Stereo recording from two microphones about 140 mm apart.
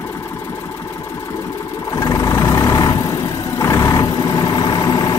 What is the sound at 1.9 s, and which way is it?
Vehicle, 25° left (ahead or behind).